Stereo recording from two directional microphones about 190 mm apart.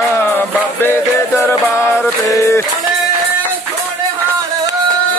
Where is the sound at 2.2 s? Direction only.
15° left (ahead or behind).